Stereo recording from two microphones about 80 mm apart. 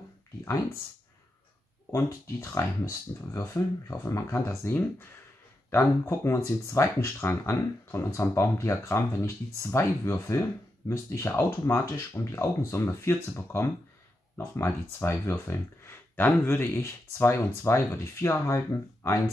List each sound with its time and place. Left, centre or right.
1.9 s speech: left